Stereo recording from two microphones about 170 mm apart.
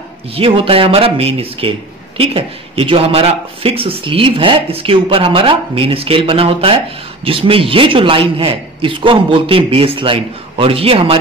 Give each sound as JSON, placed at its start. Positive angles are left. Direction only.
{"t": 0.4, "sound": "speech", "side_deg": -30}